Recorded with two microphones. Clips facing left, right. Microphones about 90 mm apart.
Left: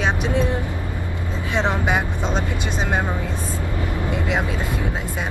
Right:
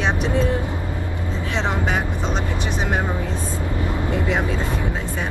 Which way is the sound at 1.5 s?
15° left (ahead or behind).